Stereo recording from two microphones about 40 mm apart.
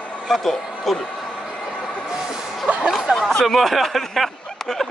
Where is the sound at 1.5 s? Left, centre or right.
Left.